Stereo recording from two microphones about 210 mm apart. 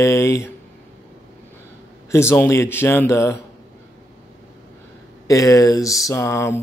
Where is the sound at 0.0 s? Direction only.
15° left (ahead or behind).